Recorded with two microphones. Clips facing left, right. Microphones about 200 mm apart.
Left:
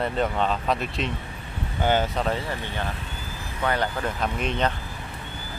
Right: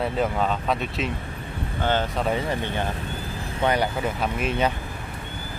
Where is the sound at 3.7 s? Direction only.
10° right (ahead or behind).